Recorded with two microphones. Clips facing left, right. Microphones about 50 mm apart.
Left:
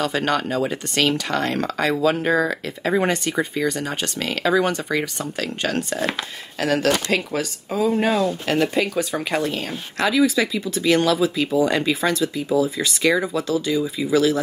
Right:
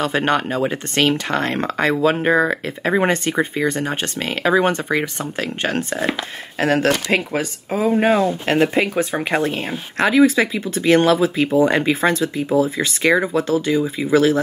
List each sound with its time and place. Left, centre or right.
0.0 s speech: right